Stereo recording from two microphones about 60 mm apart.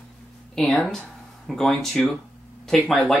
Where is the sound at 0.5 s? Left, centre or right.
Centre.